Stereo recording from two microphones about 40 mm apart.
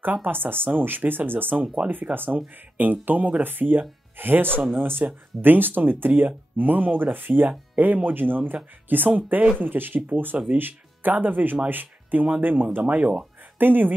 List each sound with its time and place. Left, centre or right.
0.0 s speech: right
3.4 s speech: right
5.0 s speech: right
7.4 s speech: right
9.6 s speech: right
12.8 s speech: right
13.6 s speech: right